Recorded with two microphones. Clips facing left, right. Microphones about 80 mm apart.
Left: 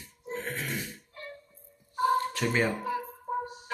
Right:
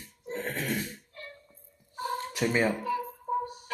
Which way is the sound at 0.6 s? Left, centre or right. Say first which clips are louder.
Right 3 dB; right.